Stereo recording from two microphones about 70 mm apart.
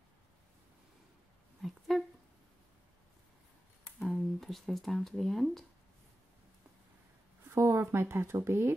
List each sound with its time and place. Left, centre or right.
1.6 s a sound: centre
4.0 s speech: centre
7.4 s speech: right